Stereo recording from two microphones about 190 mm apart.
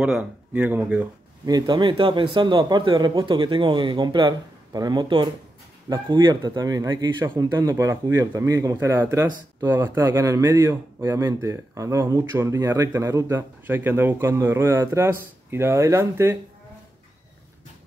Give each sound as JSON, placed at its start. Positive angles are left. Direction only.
{"t": 0.0, "sound": "speech", "side_deg": -5}
{"t": 1.4, "sound": "speech", "side_deg": -20}